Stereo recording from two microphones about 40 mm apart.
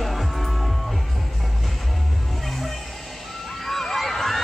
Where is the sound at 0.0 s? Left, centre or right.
Centre.